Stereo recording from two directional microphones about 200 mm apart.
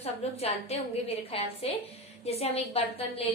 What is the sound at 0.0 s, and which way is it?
A woman's voice, 30° left (ahead or behind).